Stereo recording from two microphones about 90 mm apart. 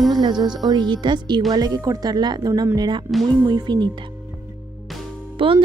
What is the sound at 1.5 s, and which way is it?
Speech, 45° right (ahead or behind).